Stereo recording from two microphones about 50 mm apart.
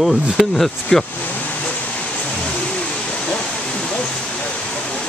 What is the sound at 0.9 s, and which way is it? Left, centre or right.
Speech, centre.